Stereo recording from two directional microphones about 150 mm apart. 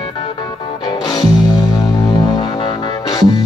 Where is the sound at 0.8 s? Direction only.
25° left (ahead or behind).